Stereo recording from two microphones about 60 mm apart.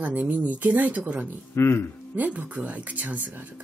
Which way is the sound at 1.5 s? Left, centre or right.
Left.